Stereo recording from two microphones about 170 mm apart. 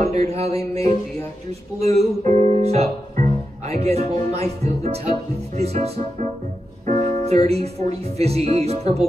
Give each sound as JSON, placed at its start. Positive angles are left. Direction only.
{"t": 0.0, "sound": "mantra", "side_deg": -40}
{"t": 1.8, "sound": "speech", "side_deg": -40}
{"t": 6.9, "sound": "piano", "side_deg": -40}
{"t": 8.2, "sound": "speech", "side_deg": -35}